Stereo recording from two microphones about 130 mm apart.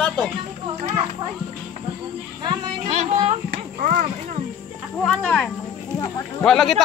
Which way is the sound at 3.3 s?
85° right.